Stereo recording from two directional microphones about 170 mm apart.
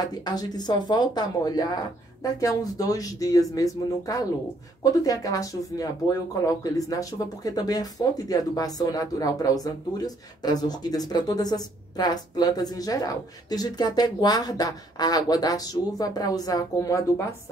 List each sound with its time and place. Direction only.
0.2 s speech: 25° left (ahead or behind)